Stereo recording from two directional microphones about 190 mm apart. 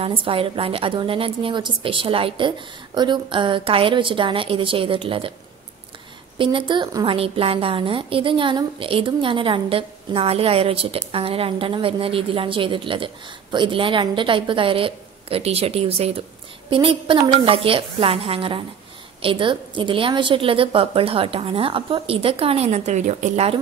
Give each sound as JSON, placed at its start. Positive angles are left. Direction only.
{"t": 0.0, "sound": "a woman's voice", "side_deg": -30}
{"t": 6.3, "sound": "a woman's voice", "side_deg": -25}